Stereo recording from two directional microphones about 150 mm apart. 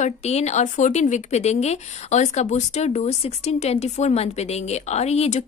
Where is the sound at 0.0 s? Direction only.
45° left (ahead or behind).